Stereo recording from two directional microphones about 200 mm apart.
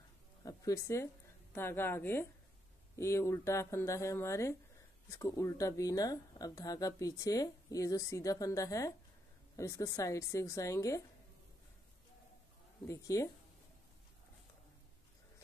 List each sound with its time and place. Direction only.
0.4 s speech: 15° left (ahead or behind)
12.8 s speech: 15° left (ahead or behind)